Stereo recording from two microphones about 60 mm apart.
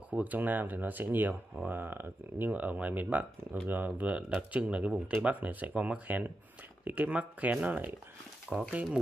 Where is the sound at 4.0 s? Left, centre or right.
Right.